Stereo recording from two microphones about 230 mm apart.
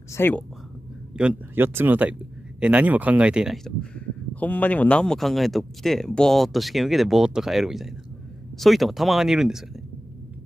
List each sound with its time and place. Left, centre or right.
0.1 s speech: centre
1.1 s speech: centre